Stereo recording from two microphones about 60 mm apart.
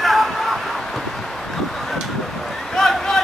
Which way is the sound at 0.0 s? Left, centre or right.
Centre.